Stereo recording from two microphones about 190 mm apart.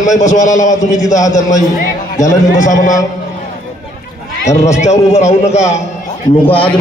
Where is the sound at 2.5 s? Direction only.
40° left (ahead or behind).